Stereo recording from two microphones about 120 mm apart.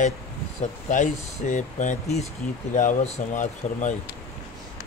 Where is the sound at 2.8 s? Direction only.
80° left.